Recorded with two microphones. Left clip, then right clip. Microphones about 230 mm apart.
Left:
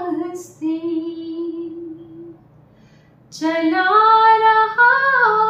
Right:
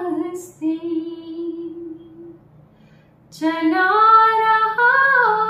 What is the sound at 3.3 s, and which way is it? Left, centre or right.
Female singing, centre.